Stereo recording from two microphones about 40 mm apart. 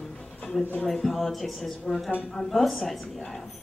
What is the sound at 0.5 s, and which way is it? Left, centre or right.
A woman's voice, centre.